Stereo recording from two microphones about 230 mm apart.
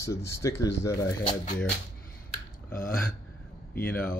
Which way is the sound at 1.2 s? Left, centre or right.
Left.